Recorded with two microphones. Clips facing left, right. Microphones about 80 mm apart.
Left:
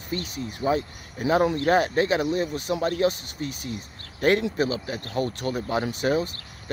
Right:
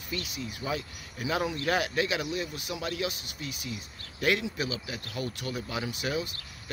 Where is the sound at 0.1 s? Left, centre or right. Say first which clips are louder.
Left 5 dB; left.